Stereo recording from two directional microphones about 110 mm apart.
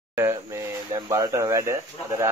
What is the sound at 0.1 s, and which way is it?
Speech, 25° right (ahead or behind).